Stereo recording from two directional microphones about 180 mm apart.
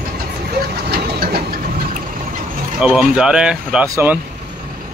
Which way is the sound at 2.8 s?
5° right (ahead or behind).